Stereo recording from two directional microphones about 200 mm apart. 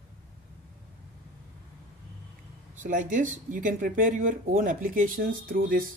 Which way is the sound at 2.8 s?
40° right (ahead or behind).